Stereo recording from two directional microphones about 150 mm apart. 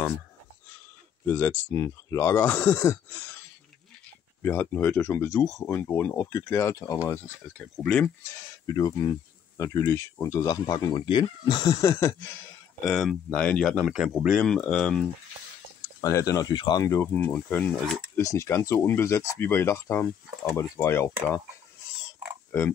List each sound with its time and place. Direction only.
1.2 s speech: 15° left (ahead or behind)
4.4 s speech: 15° left (ahead or behind)
7.5 s speech: 5° left (ahead or behind)
8.7 s speech: 25° left (ahead or behind)
12.8 s speech: centre (ahead or behind)
13.3 s speech: 10° left (ahead or behind)
16.0 s speech: 20° left (ahead or behind)